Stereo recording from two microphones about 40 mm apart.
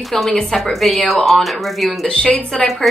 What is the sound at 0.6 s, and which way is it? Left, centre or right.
A woman's voice, centre.